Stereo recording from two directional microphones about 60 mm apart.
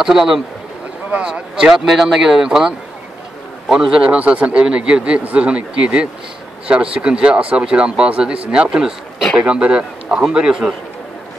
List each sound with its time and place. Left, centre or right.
0.0 s speech: centre
3.8 s speech: centre